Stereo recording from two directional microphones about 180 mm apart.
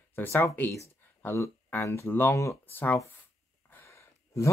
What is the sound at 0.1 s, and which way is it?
Speech, 10° left (ahead or behind).